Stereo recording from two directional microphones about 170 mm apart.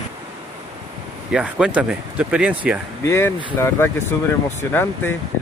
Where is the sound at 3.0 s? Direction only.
15° left (ahead or behind).